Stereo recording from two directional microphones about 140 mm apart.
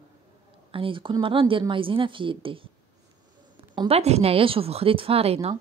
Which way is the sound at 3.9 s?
50° right (ahead or behind).